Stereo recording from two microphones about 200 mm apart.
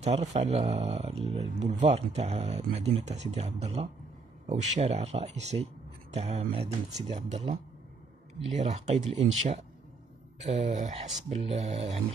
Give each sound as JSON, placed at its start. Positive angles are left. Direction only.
{"t": 0.0, "sound": "speech", "side_deg": -35}
{"t": 8.5, "sound": "speech", "side_deg": -35}
{"t": 10.4, "sound": "speech", "side_deg": -35}